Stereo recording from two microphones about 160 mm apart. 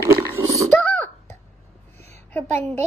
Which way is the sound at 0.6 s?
10° left (ahead or behind).